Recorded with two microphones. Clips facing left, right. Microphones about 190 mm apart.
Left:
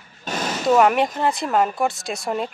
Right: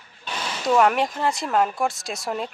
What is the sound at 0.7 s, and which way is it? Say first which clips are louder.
Speech: left 2 dB; 5° left (ahead or behind).